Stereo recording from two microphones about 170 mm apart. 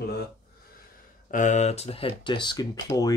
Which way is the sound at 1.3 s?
45° left (ahead or behind).